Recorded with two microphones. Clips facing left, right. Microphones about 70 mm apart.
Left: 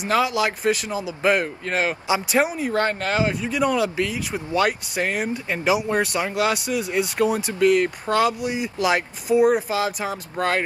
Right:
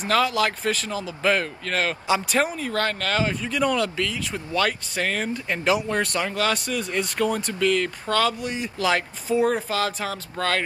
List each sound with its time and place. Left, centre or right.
0.0 s speech: centre